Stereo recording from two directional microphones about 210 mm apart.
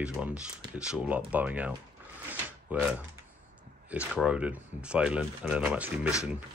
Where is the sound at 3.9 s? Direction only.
5° right (ahead or behind).